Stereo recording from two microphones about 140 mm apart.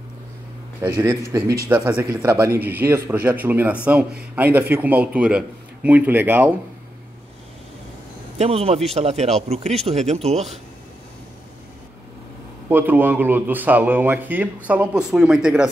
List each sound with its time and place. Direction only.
0.8 s a man's voice: 30° right (ahead or behind)
8.4 s speech: 45° right (ahead or behind)
12.6 s speech: 15° right (ahead or behind)